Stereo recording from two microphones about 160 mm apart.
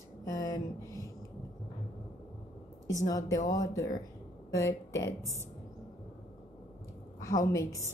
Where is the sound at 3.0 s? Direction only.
20° left (ahead or behind).